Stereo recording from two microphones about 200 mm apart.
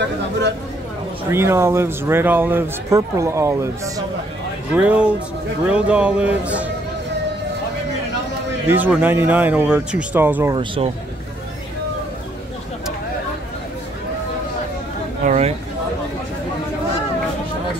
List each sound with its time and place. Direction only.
1.3 s speech: 10° right (ahead or behind)
8.6 s speech: 10° right (ahead or behind)
10.5 s speech: 25° right (ahead or behind)
15.2 s a sound: 35° right (ahead or behind)